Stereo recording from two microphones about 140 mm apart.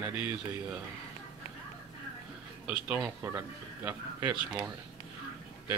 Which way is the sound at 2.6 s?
10° right (ahead or behind).